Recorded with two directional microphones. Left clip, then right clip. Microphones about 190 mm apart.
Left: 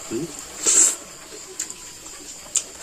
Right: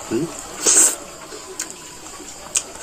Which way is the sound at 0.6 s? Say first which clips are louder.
Right 3 dB; 10° left (ahead or behind).